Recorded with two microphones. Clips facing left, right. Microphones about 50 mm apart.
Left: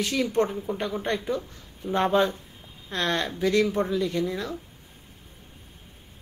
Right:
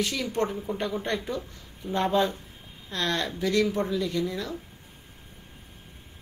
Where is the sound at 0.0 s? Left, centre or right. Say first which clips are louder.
Left 3 dB; left.